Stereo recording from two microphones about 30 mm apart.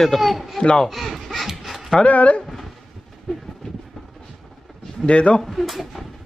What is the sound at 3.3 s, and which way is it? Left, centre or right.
Vehicle, centre.